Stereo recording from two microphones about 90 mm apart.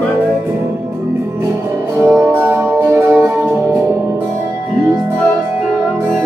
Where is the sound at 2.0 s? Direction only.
25° right (ahead or behind).